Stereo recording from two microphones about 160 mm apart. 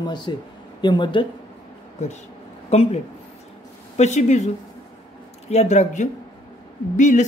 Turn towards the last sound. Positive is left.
turn(degrees=50)  # may be behind; listen again after turning